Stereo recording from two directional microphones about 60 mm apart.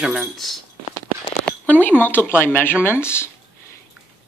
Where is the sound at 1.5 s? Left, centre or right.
Left.